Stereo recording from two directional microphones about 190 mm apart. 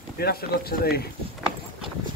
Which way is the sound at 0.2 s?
55° left (ahead or behind).